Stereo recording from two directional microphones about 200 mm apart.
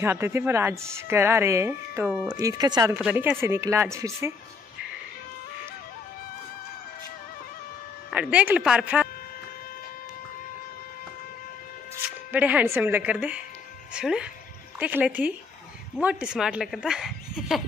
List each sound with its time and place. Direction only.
0.0 s speech: 10° right (ahead or behind)
3.0 s speech: 5° right (ahead or behind)
8.1 s speech: 5° right (ahead or behind)
12.3 s speech: 10° right (ahead or behind)